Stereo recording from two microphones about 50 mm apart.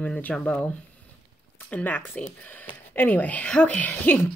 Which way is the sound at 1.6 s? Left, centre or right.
Left.